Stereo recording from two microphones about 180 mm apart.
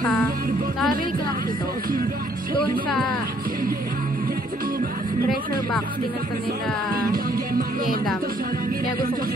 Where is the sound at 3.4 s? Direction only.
55° right (ahead or behind).